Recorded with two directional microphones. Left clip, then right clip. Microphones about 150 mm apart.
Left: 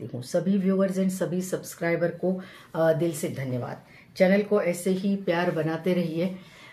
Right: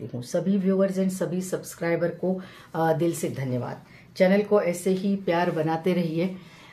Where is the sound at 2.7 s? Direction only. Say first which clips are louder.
Even; 25° right (ahead or behind).